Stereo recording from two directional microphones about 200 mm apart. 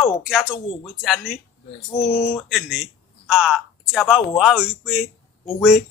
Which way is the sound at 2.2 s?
5° right (ahead or behind).